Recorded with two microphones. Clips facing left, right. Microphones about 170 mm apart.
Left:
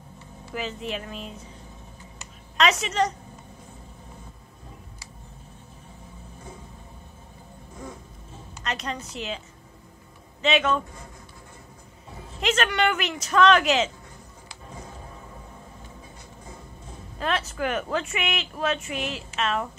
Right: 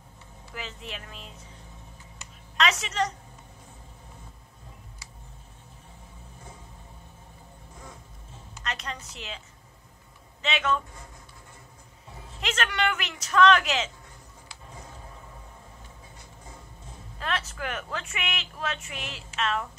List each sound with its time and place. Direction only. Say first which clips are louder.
2.6 s a woman's voice: left 4 dB; 15° left (ahead or behind)
8.6 s speech: left 5 dB; 20° left (ahead or behind)
10.4 s speech: left 5 dB; 20° left (ahead or behind)
12.4 s speech: left 5 dB; 20° left (ahead or behind)
17.2 s a woman's voice: left 5 dB; 20° left (ahead or behind)